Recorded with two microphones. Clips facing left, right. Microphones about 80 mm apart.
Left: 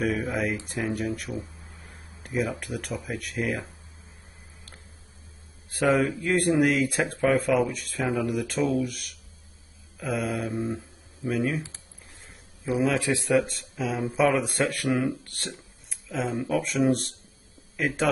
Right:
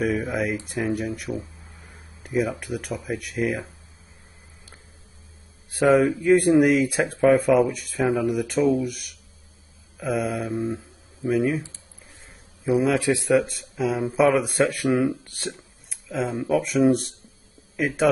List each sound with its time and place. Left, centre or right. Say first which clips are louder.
0.2 s speech: right 2 dB; centre
5.7 s speech: right 5 dB; centre
8.1 s speech: right 3 dB; centre
8.4 s speech: right 4 dB; centre
8.6 s speech: right 4 dB; centre
12.6 s speech: right 4 dB; centre
15.4 s a sound: right 7 dB; centre
16.5 s speech: right 5 dB; centre